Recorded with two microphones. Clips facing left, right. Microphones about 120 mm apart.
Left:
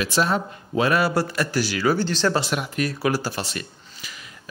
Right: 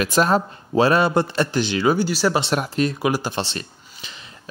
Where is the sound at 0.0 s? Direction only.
45° right (ahead or behind).